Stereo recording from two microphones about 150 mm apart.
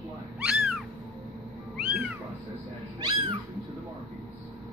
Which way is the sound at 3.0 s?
30° right (ahead or behind).